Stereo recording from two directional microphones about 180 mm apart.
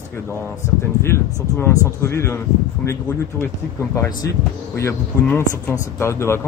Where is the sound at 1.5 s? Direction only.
15° left (ahead or behind).